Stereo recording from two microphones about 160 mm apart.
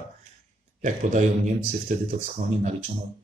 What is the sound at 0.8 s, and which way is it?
Speech, 50° right (ahead or behind).